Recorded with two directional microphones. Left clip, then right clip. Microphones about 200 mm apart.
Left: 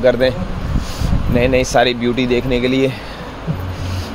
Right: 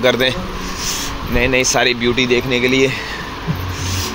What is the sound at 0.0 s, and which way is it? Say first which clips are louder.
Speech: left 1 dB; 15° left (ahead or behind).